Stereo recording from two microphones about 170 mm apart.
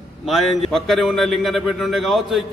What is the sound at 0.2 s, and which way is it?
A man's voice, centre (ahead or behind).